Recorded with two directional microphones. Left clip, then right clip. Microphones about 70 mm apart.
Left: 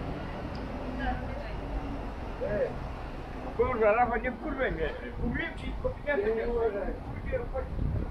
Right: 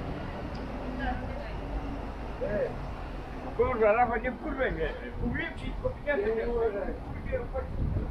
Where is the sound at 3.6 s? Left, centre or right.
Left.